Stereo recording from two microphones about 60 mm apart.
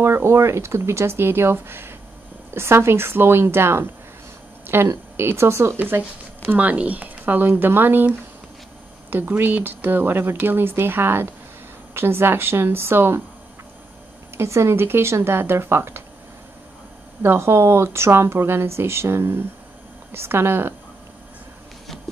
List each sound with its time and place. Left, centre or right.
0.0 s speech: right
5.9 s speech: right
9.4 s speech: right
14.3 s speech: right
17.2 s speech: right